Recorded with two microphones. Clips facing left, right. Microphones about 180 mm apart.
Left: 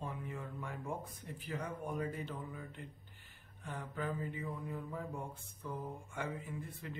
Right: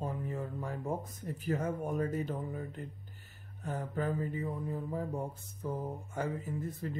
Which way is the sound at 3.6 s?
40° right (ahead or behind).